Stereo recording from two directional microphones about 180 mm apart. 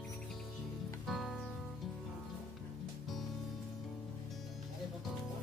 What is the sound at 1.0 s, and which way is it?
Music, centre (ahead or behind).